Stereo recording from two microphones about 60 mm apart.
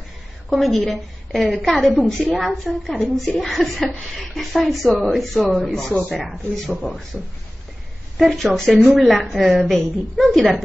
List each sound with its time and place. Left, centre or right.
0.5 s a woman's voice: centre
8.2 s a woman's voice: centre
8.5 s a woman's voice: centre